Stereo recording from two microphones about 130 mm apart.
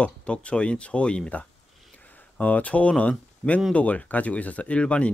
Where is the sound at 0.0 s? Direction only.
10° left (ahead or behind).